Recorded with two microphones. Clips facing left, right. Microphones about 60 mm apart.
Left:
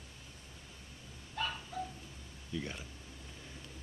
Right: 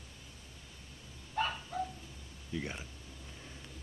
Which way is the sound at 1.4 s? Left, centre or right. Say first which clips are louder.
Right 4 dB; right.